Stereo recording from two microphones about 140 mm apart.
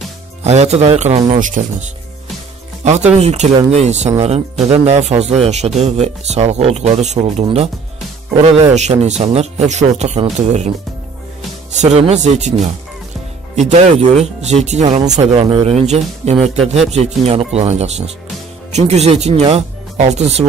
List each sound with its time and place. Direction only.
0.4 s speech: 50° right (ahead or behind)
1.4 s speech: 65° right (ahead or behind); by 7.7 s 45° right (ahead or behind)
8.7 s speech: 55° right (ahead or behind)
11.8 s speech: 50° right (ahead or behind)
13.6 s speech: 50° right (ahead or behind)
15.0 s speech: 35° right (ahead or behind)
15.7 s speech: 50° right (ahead or behind)